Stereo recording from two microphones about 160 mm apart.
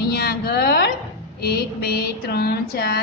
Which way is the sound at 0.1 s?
75° left (ahead or behind).